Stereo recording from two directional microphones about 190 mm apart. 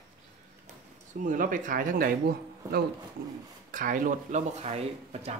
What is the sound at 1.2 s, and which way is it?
Speech, 45° right (ahead or behind).